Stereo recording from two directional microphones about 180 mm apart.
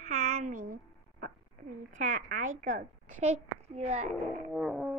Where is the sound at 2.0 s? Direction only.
45° right (ahead or behind).